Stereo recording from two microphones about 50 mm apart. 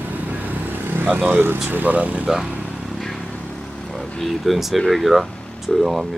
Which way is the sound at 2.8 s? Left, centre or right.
Centre.